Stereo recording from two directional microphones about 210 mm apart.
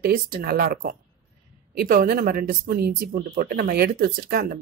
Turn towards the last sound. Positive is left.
turn(degrees=-45)  # may be behind; listen again after turning